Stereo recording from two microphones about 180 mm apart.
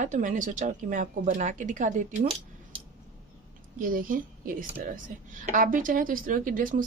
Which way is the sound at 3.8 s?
50° right (ahead or behind).